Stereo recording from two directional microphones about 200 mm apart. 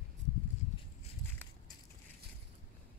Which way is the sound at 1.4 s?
10° left (ahead or behind).